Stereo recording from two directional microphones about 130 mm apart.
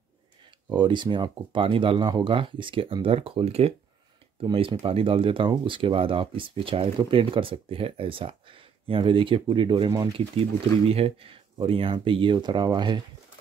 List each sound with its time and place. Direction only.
0.7 s speech: 40° right (ahead or behind)
4.4 s speech: 40° right (ahead or behind)
10.9 s speech: 50° right (ahead or behind)